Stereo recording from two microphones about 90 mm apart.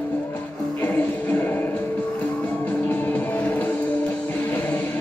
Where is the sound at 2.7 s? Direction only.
15° left (ahead or behind).